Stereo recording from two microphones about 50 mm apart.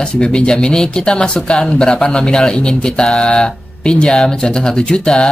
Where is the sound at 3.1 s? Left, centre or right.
Left.